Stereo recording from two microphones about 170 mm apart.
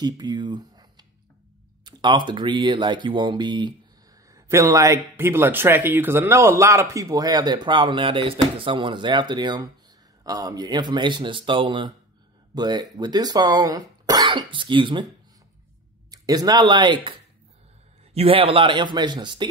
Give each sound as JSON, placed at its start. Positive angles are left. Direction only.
{"t": 0.0, "sound": "speech", "side_deg": -25}
{"t": 16.1, "sound": "speech", "side_deg": -20}